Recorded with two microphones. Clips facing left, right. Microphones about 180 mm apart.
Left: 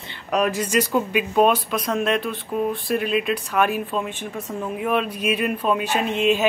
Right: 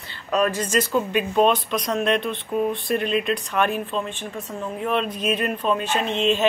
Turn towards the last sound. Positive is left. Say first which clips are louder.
# left 1 dB
turn(degrees=10)  # may be behind; listen again after turning